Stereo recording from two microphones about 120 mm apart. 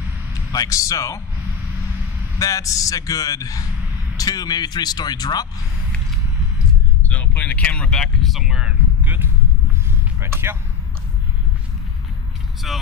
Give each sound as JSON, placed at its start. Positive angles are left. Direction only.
{"t": 0.5, "sound": "a man's voice", "side_deg": 30}
{"t": 2.3, "sound": "a man's voice", "side_deg": 30}
{"t": 7.1, "sound": "speech", "side_deg": 10}
{"t": 12.7, "sound": "speech", "side_deg": 0}